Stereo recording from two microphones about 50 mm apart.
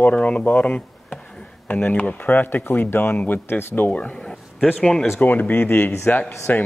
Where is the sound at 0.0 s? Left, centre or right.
Left.